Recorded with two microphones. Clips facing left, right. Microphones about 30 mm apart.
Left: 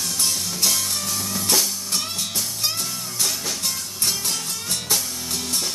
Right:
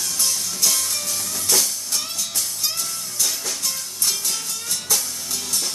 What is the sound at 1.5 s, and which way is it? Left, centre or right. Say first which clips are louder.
Music: right 1 dB; centre.